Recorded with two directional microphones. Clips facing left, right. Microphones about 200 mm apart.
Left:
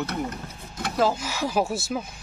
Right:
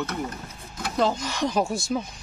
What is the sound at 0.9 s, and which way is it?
Speech, 5° left (ahead or behind).